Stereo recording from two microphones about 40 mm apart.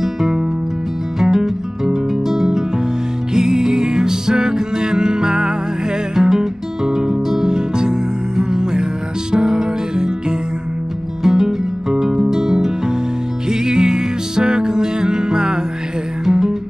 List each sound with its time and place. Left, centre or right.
0.0 s music: centre
11.2 s music: centre